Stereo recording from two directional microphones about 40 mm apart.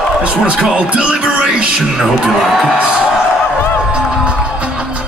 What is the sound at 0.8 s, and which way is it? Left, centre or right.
Music, right.